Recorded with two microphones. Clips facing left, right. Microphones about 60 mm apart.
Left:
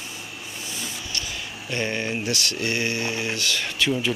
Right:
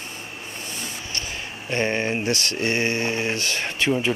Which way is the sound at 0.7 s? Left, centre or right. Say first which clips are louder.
Left 1 dB; right.